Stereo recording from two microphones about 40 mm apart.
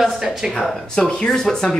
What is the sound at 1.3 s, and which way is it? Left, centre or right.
Speech, centre.